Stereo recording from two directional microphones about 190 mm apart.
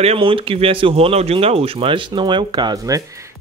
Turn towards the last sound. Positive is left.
turn(degrees=-15)  # may be behind; listen again after turning